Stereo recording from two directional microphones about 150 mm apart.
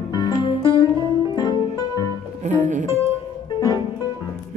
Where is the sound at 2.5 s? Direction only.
55° right (ahead or behind).